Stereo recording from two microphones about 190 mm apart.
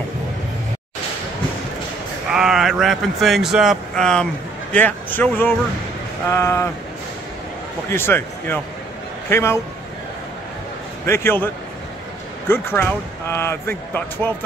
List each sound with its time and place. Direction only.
2.3 s speech: centre (ahead or behind)
7.9 s speech: 10° left (ahead or behind)
11.1 s speech: 10° left (ahead or behind)